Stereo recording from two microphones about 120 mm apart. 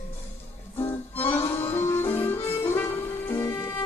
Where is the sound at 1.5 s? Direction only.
20° left (ahead or behind).